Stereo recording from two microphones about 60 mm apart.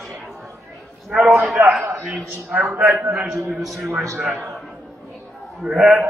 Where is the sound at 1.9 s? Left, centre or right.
Right.